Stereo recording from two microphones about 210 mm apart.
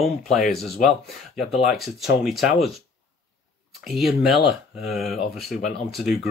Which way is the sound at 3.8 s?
Centre (ahead or behind).